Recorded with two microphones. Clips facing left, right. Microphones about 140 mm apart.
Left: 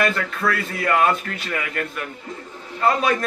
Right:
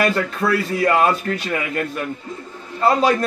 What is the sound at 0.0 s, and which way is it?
A man's voice, 35° right (ahead or behind).